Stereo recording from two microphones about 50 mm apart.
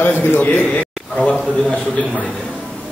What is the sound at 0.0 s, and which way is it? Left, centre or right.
A man's voice, left.